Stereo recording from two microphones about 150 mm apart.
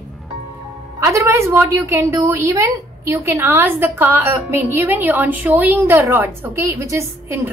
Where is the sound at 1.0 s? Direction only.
20° right (ahead or behind).